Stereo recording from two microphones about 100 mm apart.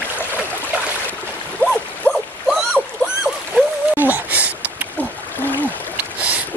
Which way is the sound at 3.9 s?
15° right (ahead or behind).